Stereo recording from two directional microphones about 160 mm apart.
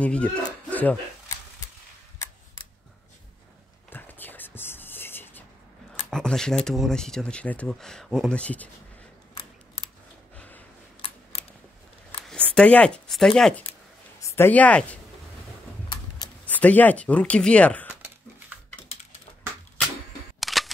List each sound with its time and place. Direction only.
0.0 s speech: 10° left (ahead or behind)
0.7 s a sound: 10° left (ahead or behind)
3.9 s whispering: 10° left (ahead or behind)
6.0 s speech: 5° left (ahead or behind)
10.3 s a sound: 10° left (ahead or behind)
11.0 s a sound: 35° left (ahead or behind)
12.3 s speech: 5° left (ahead or behind)
16.4 s speech: 10° left (ahead or behind)
20.3 s single-lens reflex camera: centre (ahead or behind)